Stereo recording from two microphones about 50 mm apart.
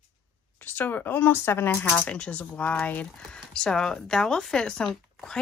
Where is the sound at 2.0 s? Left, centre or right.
Left.